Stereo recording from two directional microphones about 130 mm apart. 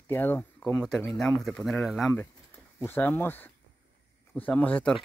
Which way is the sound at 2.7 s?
15° left (ahead or behind).